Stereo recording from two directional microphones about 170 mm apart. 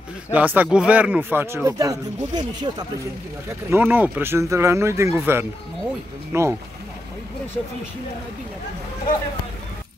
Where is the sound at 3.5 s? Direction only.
15° right (ahead or behind).